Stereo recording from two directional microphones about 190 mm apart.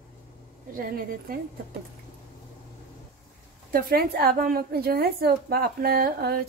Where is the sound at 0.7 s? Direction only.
50° right (ahead or behind).